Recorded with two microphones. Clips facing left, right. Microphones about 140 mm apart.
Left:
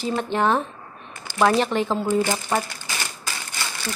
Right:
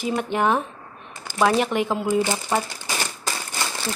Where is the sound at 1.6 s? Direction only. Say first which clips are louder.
Even; 10° right (ahead or behind).